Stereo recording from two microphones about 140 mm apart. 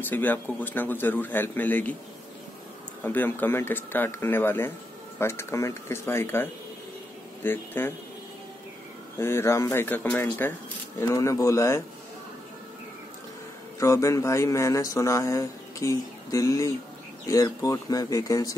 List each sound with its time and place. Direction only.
0.0 s speech: 10° left (ahead or behind)
3.0 s speech: 15° left (ahead or behind)
9.2 s speech: 20° left (ahead or behind)
13.7 s speech: 20° left (ahead or behind)